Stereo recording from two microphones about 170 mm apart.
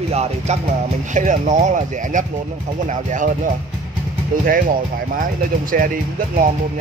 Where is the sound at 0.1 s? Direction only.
40° right (ahead or behind).